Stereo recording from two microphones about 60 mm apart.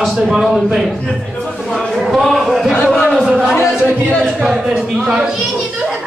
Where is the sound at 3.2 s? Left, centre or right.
Centre.